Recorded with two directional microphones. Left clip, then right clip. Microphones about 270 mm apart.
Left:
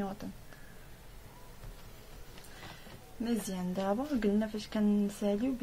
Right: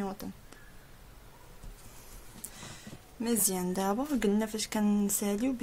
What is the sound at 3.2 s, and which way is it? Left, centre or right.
A woman's voice, right.